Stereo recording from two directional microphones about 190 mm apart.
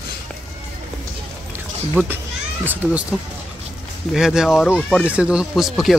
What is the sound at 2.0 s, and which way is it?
Speech, 10° right (ahead or behind).